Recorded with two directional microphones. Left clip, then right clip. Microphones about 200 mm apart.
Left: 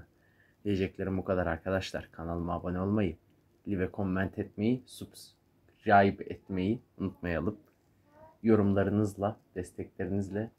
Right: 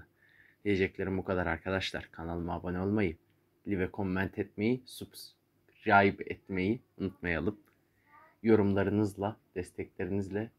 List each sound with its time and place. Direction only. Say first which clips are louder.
0.7 s speech: right 2 dB; 5° left (ahead or behind)